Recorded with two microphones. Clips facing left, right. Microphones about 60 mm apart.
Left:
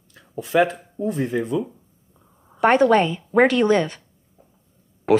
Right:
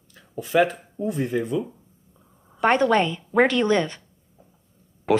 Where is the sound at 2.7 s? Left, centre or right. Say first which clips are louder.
Left 4 dB; centre.